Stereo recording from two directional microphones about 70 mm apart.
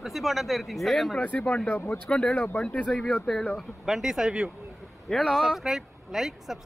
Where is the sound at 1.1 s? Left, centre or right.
Left.